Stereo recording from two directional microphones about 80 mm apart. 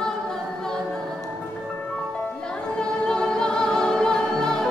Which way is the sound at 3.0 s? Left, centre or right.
Centre.